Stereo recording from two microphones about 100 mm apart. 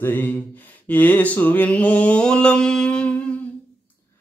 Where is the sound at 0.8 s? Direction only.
15° left (ahead or behind).